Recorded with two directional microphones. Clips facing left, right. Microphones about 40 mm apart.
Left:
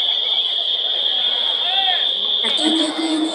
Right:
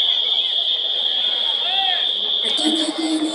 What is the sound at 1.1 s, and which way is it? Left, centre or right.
Fire alarm, centre.